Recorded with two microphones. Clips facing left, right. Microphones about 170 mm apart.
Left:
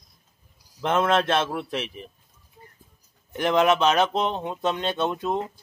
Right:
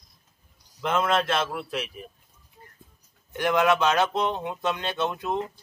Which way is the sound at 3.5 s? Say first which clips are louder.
Left 2 dB; 25° left (ahead or behind).